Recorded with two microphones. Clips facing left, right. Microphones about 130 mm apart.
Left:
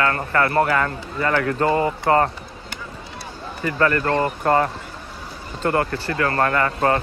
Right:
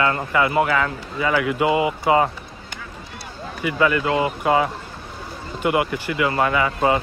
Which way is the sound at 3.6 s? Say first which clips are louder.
Even; 10° right (ahead or behind).